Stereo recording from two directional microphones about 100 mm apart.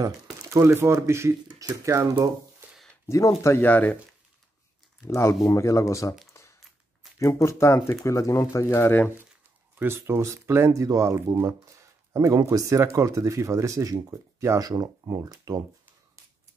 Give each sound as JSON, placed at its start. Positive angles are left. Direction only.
{"t": 0.0, "sound": "speech", "side_deg": -30}
{"t": 3.1, "sound": "speech", "side_deg": 30}
{"t": 3.6, "sound": "speech", "side_deg": 20}
{"t": 5.0, "sound": "speech", "side_deg": 30}
{"t": 7.2, "sound": "speech", "side_deg": 30}
{"t": 9.8, "sound": "speech", "side_deg": -25}
{"t": 11.4, "sound": "a sound", "side_deg": -30}
{"t": 12.4, "sound": "speech", "side_deg": -35}